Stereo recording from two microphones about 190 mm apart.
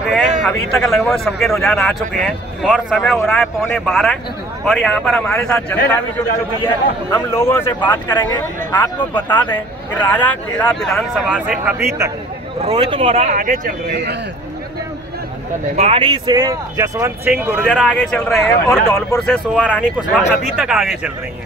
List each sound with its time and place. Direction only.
0.4 s speech: 5° left (ahead or behind)
1.5 s speech: 10° left (ahead or behind)
7.2 s speech: 10° left (ahead or behind)
8.1 s speech: 20° left (ahead or behind)
8.7 s speech: 10° left (ahead or behind); by 12.1 s 10° right (ahead or behind)
12.6 s speech: 30° right (ahead or behind); by 14.1 s 55° right (ahead or behind)
15.7 s speech: 35° right (ahead or behind)
16.0 s speech: 25° right (ahead or behind)
17.6 s speech: 5° left (ahead or behind)